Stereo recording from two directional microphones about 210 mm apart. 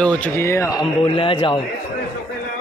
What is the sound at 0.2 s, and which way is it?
Speech, 10° left (ahead or behind).